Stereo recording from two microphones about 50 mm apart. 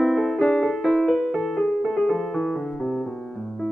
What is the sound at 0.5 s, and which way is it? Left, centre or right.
Piano, centre.